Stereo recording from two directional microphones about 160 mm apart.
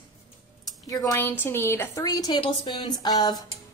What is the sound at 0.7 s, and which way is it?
A woman's voice, 20° left (ahead or behind).